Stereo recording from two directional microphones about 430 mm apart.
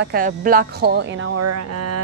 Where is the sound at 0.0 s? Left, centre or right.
Centre.